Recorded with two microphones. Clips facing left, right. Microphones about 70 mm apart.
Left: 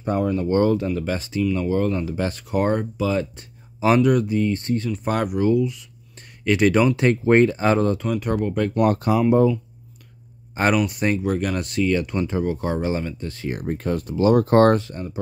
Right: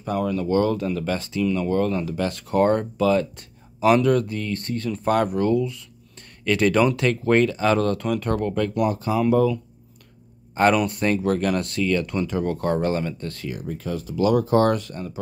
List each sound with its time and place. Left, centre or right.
0.2 s speech: left
0.8 s speech: centre
2.1 s speech: left
2.4 s speech: centre
4.8 s speech: centre
8.5 s speech: left
8.8 s speech: left
9.1 s speech: left
12.4 s speech: centre
13.5 s speech: left
14.8 s speech: left